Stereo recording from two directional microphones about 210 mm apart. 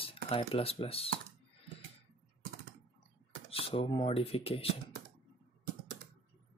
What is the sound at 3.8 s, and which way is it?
Speech, 25° left (ahead or behind).